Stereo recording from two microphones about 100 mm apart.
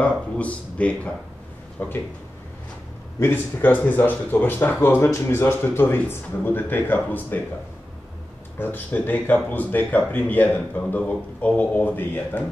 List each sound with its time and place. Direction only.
0.0 s speech: 15° left (ahead or behind)
3.2 s speech: 20° left (ahead or behind)
8.5 s speech: 20° left (ahead or behind)